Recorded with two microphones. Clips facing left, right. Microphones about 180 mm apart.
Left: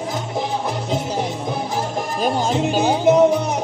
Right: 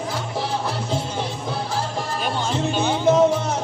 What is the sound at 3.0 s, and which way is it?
Music, 15° left (ahead or behind).